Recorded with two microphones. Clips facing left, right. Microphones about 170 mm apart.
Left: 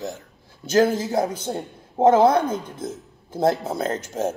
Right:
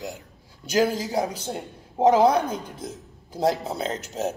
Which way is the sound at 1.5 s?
35° left (ahead or behind).